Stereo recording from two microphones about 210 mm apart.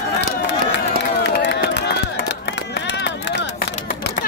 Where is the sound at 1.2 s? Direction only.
55° left (ahead or behind).